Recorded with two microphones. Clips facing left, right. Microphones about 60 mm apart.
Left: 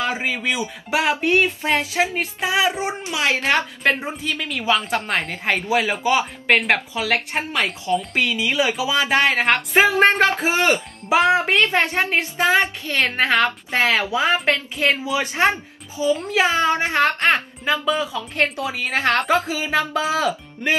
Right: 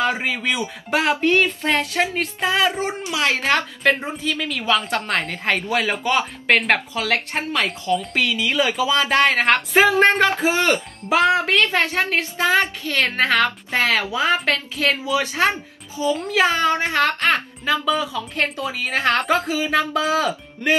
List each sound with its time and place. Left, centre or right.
0.0 s a woman's voice: centre
11.1 s a woman's voice: left
13.1 s speech: centre
13.7 s a woman's voice: left
16.1 s a woman's voice: centre
16.3 s a woman's voice: centre
17.2 s speech: centre
18.1 s a woman's voice: left
18.7 s speech: centre
19.2 s a woman's voice: centre